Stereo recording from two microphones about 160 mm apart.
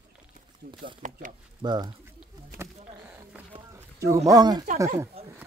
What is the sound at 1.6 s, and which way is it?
Speech, 25° right (ahead or behind).